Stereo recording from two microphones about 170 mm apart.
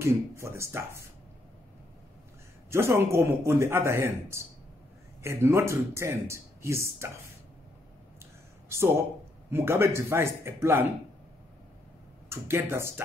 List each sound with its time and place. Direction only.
0.0 s speech: 15° right (ahead or behind)
2.7 s speech: 15° right (ahead or behind)
8.6 s a sound: 15° right (ahead or behind)
9.5 s speech: 15° right (ahead or behind)
12.3 s speech: 15° right (ahead or behind)